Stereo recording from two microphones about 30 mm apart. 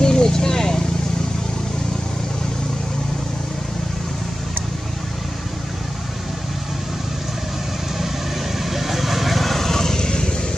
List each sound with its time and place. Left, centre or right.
0.0 s vehicle: left
8.6 s vehicle: centre; by 10.3 s left